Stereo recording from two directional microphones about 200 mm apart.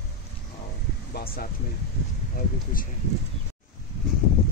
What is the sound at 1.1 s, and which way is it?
Speech, 50° left (ahead or behind).